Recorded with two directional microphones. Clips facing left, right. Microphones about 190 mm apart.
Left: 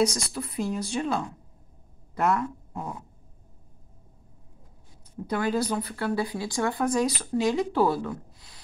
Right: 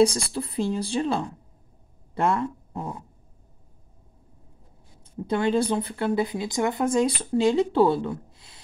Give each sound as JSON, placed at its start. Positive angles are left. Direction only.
{"t": 0.0, "sound": "speech", "side_deg": -30}
{"t": 5.2, "sound": "speech", "side_deg": -25}